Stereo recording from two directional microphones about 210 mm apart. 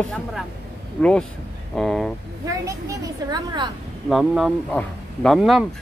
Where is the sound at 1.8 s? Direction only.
Centre (ahead or behind).